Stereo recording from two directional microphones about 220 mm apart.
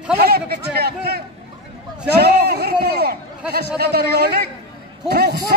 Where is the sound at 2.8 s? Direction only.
45° right (ahead or behind).